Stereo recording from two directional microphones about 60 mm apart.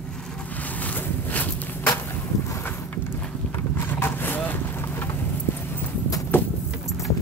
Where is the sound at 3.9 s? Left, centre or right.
Left.